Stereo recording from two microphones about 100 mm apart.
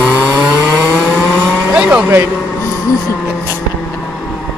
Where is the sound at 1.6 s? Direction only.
10° right (ahead or behind).